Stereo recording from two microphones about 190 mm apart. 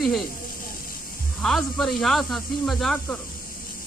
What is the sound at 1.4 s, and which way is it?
Speech, centre (ahead or behind).